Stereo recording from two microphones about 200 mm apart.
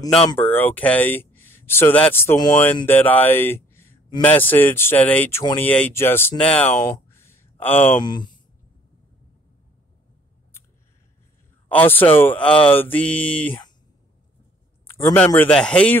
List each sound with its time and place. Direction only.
0.4 s speech: 10° left (ahead or behind)
5.4 s speech: 20° left (ahead or behind)
5.7 s speech: 10° left (ahead or behind)
7.2 s a sound: 10° left (ahead or behind)
8.0 s speech: 20° left (ahead or behind)
11.7 s speech: 10° left (ahead or behind)
15.1 s speech: 10° left (ahead or behind)